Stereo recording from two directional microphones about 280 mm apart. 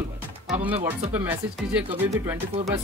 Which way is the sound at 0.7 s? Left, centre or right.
Right.